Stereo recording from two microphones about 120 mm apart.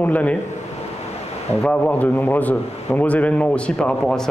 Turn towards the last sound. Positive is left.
turn(degrees=5)  # may be behind; listen again after turning